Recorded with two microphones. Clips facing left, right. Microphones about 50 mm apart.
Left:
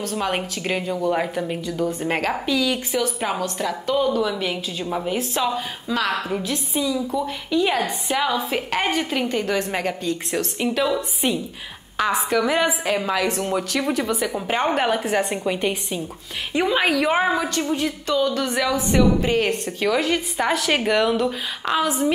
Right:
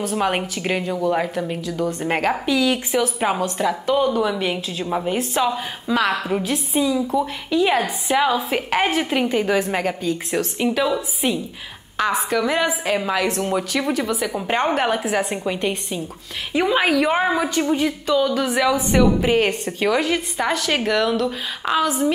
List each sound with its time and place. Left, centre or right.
0.0 s a woman's voice: centre
2.0 s a woman's voice: centre
17.6 s a woman's voice: centre